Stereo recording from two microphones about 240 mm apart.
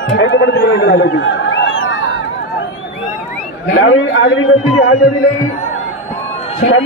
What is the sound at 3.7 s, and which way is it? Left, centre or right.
Speech, left.